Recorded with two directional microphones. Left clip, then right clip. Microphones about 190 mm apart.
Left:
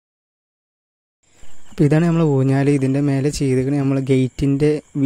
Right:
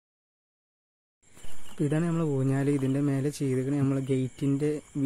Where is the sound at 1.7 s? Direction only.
50° left (ahead or behind).